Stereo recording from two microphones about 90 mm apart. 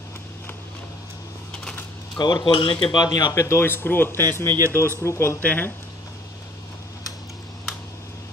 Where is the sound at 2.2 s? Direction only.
55° left (ahead or behind).